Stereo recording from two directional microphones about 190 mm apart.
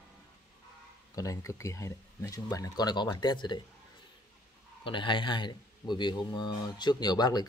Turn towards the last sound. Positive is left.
turn(degrees=20)  # may be behind; listen again after turning